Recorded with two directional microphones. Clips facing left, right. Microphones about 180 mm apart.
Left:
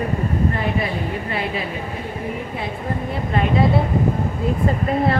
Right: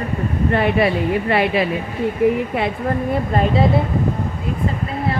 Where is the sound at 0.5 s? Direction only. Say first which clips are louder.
Right 6 dB; 75° right (ahead or behind).